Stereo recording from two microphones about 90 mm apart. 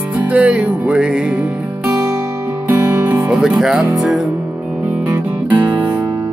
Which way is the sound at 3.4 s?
5° right (ahead or behind).